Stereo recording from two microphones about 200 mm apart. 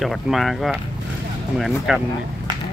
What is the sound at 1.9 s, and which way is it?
Speech, centre (ahead or behind).